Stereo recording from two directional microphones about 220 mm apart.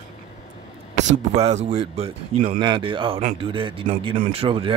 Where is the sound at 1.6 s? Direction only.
30° right (ahead or behind).